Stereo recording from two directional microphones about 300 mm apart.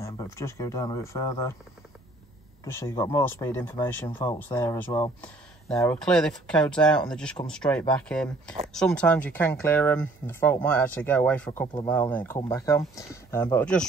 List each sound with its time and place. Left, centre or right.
0.0 s speech: centre
2.6 s speech: centre